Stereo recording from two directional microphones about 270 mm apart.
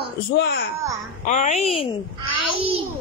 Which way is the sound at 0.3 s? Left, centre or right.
Left.